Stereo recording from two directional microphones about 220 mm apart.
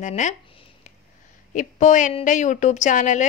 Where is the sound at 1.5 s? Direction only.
35° left (ahead or behind).